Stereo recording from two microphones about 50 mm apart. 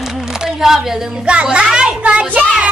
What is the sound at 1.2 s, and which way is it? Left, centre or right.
Speech, centre.